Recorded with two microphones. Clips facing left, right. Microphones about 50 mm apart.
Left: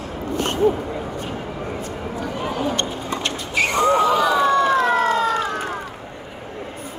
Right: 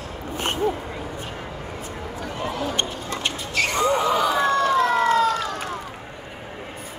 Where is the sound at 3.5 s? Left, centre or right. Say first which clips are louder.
Left 4 dB; centre.